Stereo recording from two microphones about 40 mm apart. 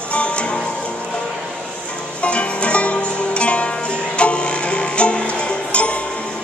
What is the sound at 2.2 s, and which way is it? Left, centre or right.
Music, left.